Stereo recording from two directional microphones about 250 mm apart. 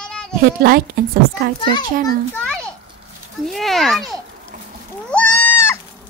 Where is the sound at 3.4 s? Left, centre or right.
Centre.